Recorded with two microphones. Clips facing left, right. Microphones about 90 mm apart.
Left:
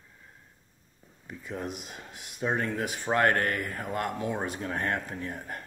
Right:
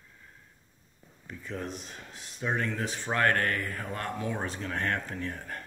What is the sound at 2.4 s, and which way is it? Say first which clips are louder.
Speech: left 2 dB; 30° left (ahead or behind).